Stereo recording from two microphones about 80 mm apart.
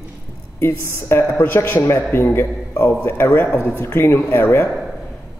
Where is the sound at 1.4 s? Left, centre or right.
Left.